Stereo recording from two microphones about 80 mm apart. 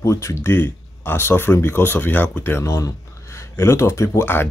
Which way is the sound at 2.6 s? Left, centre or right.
Left.